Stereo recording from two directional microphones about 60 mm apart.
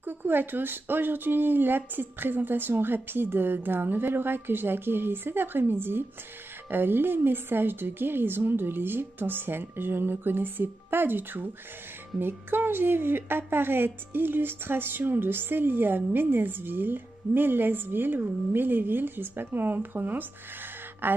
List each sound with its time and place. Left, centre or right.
0.0 s a woman's voice: right